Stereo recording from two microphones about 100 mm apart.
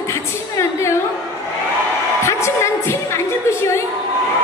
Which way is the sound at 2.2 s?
25° left (ahead or behind).